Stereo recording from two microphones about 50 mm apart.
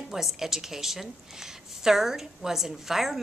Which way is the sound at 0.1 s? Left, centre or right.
Centre.